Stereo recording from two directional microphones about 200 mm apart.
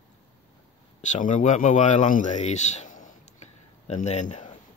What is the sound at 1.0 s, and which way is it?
Speech, 35° left (ahead or behind).